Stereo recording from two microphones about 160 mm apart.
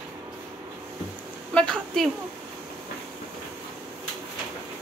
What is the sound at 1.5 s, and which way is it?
Speech, 5° left (ahead or behind).